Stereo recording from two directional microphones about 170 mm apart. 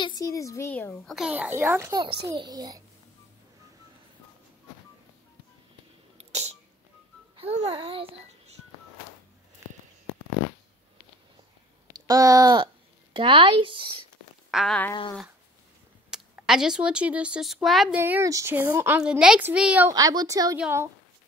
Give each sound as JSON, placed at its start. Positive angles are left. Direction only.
{"t": 0.0, "sound": "speech", "side_deg": 20}
{"t": 1.0, "sound": "a woman's voice", "side_deg": 0}
{"t": 6.1, "sound": "a sound", "side_deg": -40}
{"t": 7.3, "sound": "a child's voice", "side_deg": -40}
{"t": 12.1, "sound": "speech", "side_deg": -20}
{"t": 14.5, "sound": "a sound", "side_deg": 0}
{"t": 16.1, "sound": "speech", "side_deg": -5}
{"t": 17.9, "sound": "a woman's voice", "side_deg": -10}
{"t": 19.9, "sound": "speech", "side_deg": -20}
{"t": 20.5, "sound": "a woman's voice", "side_deg": -10}